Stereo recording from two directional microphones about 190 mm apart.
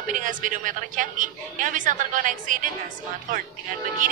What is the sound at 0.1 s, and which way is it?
A woman's voice, 45° right (ahead or behind).